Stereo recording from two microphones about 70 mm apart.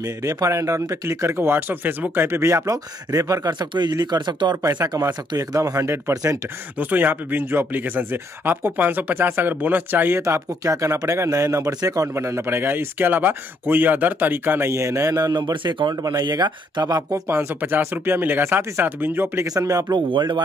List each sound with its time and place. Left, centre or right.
0.0 s speech: right
2.6 s speech: right
4.8 s speech: right
5.8 s speech: right
6.8 s speech: right
10.2 s speech: right
12.1 s speech: right
12.4 s speech: right
14.7 s speech: right
17.1 s speech: right
19.4 s speech: right
19.9 s speech: right